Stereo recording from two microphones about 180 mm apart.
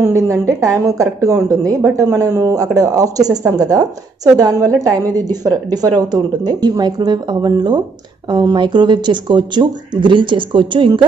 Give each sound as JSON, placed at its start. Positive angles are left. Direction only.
{"t": 0.0, "sound": "a woman's voice", "side_deg": -15}